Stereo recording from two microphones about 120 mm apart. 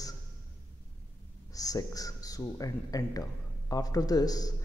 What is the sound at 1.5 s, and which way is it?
Speech, 30° left (ahead or behind).